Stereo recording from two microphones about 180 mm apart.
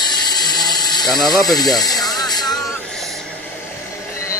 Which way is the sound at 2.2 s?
20° left (ahead or behind).